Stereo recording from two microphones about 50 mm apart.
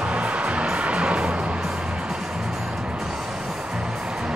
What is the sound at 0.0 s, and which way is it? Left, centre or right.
Music, right.